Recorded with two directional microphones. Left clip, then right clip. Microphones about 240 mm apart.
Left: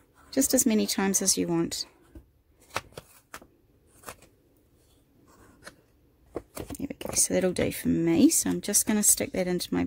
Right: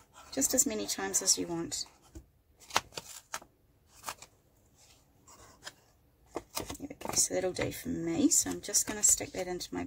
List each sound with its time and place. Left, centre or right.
0.3 s speech: left
2.7 s shuffling cards: centre
6.3 s a sound: centre
7.2 s speech: left